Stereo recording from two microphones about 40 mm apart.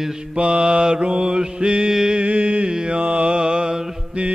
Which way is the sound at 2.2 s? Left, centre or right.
Right.